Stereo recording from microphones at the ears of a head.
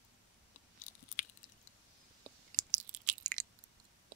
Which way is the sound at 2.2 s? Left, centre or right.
Right.